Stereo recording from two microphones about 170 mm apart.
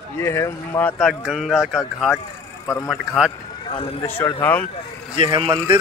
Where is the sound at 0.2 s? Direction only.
15° left (ahead or behind); by 1.8 s centre (ahead or behind).